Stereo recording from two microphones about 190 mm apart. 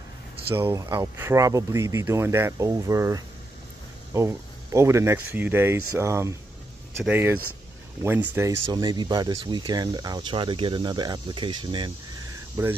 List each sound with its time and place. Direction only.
0.6 s speech: 15° right (ahead or behind)